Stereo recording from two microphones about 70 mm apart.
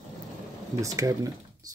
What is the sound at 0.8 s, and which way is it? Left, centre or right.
Speech, right.